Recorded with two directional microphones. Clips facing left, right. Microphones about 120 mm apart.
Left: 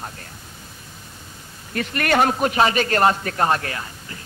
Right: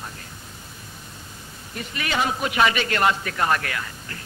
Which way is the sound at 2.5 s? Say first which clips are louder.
Left 3 dB; 35° left (ahead or behind).